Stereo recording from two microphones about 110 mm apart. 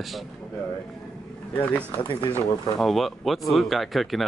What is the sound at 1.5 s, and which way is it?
Speech, 15° left (ahead or behind).